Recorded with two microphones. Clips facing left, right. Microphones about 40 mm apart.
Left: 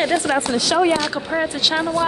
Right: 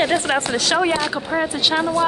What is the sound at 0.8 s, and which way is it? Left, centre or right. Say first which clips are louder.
Speech: left 1 dB; centre.